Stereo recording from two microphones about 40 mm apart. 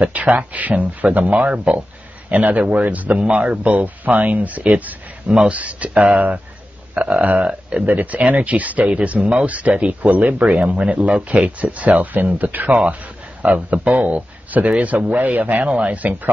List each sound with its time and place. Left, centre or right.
0.0 s speech: right
7.8 s speech: right
13.4 s speech: right
15.6 s speech: right